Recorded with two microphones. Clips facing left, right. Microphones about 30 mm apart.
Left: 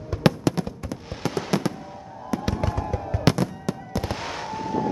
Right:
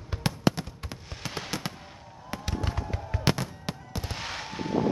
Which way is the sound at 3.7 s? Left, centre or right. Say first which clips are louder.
Left 7 dB; right.